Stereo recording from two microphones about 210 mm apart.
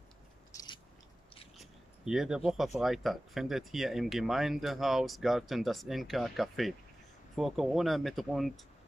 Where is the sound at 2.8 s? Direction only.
Centre (ahead or behind).